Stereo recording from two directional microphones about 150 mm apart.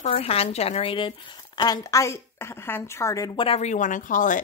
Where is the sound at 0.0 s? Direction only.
45° left (ahead or behind).